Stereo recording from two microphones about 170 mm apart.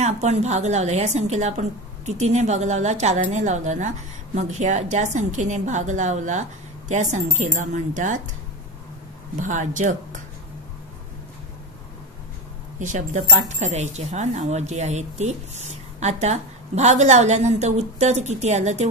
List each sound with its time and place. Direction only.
0.0 s a woman's voice: 40° right (ahead or behind)
9.4 s a woman's voice: 45° right (ahead or behind)
12.7 s speech: 50° right (ahead or behind)